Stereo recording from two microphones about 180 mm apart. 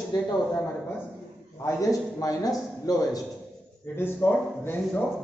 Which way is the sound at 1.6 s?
20° left (ahead or behind).